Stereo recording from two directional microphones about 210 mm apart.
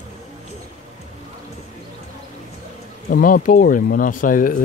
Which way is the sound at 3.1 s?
40° left (ahead or behind).